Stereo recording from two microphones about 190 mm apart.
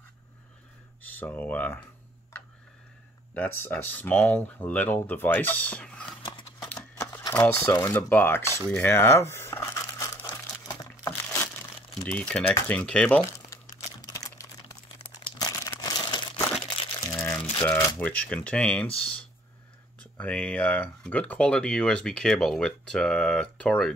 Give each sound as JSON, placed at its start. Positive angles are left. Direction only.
{"t": 1.0, "sound": "speech", "side_deg": 10}
{"t": 3.3, "sound": "speech", "side_deg": 10}
{"t": 6.2, "sound": "a sound", "side_deg": 25}
{"t": 6.7, "sound": "speech", "side_deg": 10}
{"t": 8.6, "sound": "crumpling", "side_deg": 10}
{"t": 11.9, "sound": "speech", "side_deg": 5}
{"t": 13.9, "sound": "typing", "side_deg": 20}
{"t": 15.0, "sound": "crumpling", "side_deg": 25}
{"t": 17.4, "sound": "rattle", "side_deg": 25}
{"t": 17.6, "sound": "speech", "side_deg": 10}
{"t": 20.0, "sound": "speech", "side_deg": 5}